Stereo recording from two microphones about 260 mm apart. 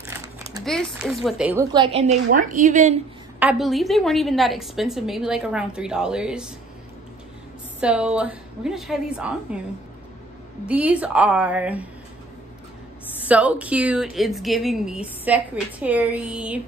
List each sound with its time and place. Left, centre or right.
0.7 s a woman's voice: centre; by 3.0 s right
3.3 s a woman's voice: centre
7.8 s a woman's voice: centre
10.7 s a woman's voice: centre
13.2 s a woman's voice: centre